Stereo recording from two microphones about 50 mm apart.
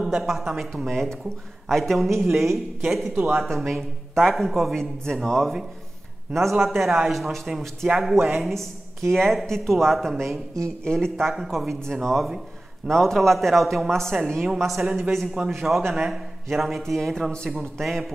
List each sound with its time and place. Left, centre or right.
0.0 s speech: centre
6.5 s speech: centre
11.2 s speech: centre